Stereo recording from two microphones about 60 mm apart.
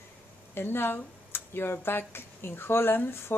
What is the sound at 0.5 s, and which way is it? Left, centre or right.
Speech, left.